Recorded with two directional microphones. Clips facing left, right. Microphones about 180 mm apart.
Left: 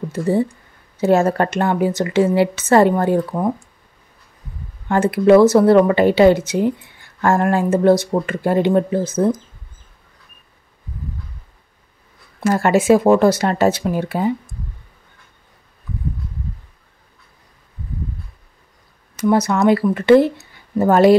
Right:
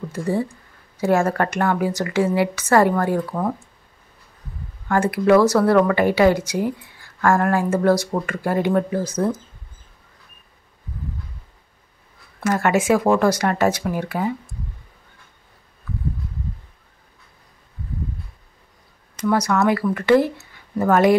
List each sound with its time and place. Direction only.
0.1 s speech: 25° left (ahead or behind)
4.8 s speech: 25° left (ahead or behind)
12.4 s speech: 30° left (ahead or behind)
19.2 s speech: 25° left (ahead or behind)